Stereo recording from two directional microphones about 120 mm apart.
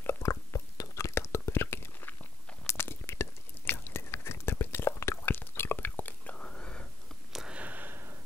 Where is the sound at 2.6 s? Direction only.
20° left (ahead or behind).